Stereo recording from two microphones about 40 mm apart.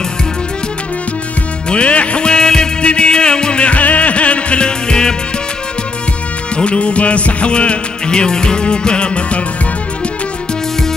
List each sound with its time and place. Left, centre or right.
1.7 s music: left
6.5 s music: left